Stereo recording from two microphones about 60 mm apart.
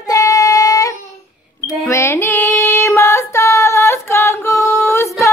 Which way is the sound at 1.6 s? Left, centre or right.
Left.